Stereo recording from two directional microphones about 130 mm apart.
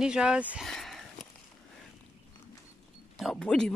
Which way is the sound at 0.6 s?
5° left (ahead or behind).